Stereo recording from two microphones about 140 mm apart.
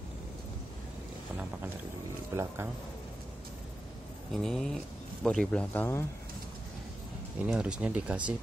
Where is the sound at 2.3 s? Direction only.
20° right (ahead or behind).